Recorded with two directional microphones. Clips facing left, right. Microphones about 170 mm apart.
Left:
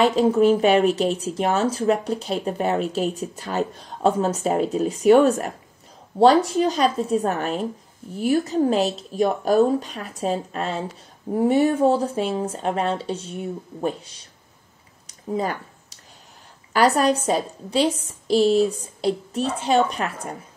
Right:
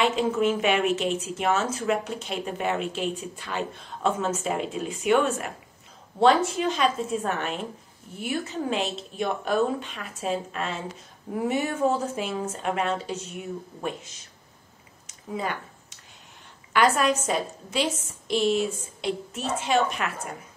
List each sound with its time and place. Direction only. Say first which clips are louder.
0.0 s speech: left 6 dB; 35° left (ahead or behind)
15.0 s a sound: left 6 dB; 35° left (ahead or behind)
16.7 s speech: left 4 dB; 35° left (ahead or behind)